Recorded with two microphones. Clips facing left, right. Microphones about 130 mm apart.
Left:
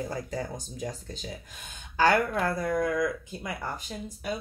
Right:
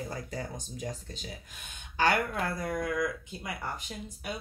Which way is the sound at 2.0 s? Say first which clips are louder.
Left 4 dB; 35° left (ahead or behind).